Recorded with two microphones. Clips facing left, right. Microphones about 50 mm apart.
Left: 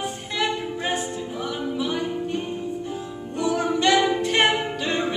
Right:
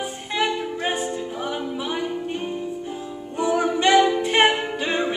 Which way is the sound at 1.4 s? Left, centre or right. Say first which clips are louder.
Left 3 dB; centre.